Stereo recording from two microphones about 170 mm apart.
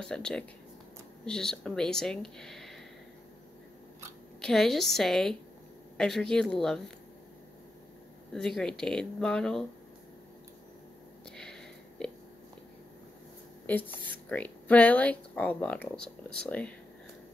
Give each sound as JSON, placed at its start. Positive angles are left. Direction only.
{"t": 0.0, "sound": "speech", "side_deg": 5}
{"t": 4.4, "sound": "speech", "side_deg": 0}
{"t": 8.4, "sound": "speech", "side_deg": 5}
{"t": 11.3, "sound": "sniff", "side_deg": 5}
{"t": 13.7, "sound": "speech", "side_deg": 10}